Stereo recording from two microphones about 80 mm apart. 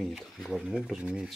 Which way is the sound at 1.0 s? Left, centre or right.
Centre.